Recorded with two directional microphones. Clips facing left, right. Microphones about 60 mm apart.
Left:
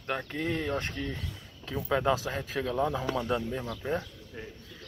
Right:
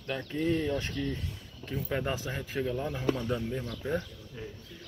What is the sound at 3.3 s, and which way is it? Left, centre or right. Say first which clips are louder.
Speech: left 2 dB; left.